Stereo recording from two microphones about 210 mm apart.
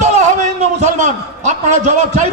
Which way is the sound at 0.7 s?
35° right (ahead or behind).